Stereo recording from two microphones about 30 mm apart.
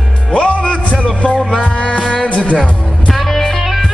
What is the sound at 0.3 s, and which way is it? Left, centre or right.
Music, left.